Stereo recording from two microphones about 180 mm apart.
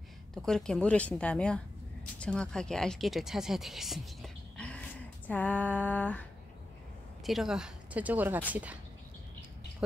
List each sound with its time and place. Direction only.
0.3 s a woman's voice: 5° left (ahead or behind)
7.2 s speech: centre (ahead or behind)